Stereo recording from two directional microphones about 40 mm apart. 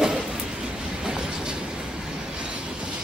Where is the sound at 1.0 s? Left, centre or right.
Centre.